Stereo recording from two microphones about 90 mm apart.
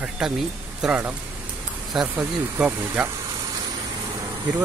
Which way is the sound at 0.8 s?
15° right (ahead or behind).